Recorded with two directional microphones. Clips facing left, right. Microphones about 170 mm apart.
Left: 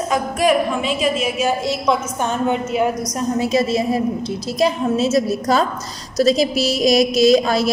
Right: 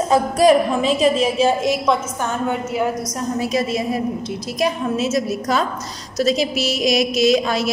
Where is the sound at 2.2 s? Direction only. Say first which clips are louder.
Left 2 dB; 20° left (ahead or behind); by 7.7 s 35° left (ahead or behind).